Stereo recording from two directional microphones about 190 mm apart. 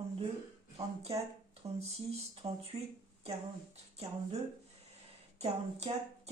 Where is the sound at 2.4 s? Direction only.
30° right (ahead or behind).